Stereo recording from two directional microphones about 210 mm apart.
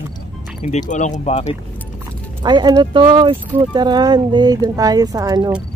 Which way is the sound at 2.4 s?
20° right (ahead or behind).